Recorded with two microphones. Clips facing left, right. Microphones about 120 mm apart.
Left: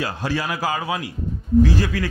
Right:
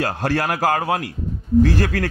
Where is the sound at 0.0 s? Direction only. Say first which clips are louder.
Right 4 dB; 65° right (ahead or behind).